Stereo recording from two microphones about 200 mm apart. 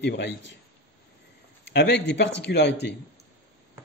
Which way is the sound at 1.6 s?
60° left (ahead or behind).